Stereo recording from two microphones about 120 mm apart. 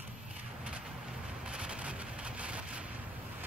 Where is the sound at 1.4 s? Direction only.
10° right (ahead or behind).